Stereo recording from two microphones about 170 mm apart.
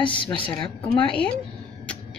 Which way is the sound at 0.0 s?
30° left (ahead or behind).